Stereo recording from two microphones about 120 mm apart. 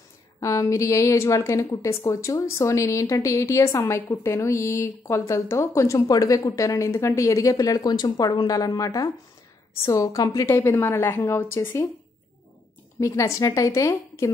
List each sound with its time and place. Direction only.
0.4 s a woman's voice: 25° left (ahead or behind)
10.5 s a woman's voice: 20° left (ahead or behind)
13.0 s a woman's voice: 25° left (ahead or behind)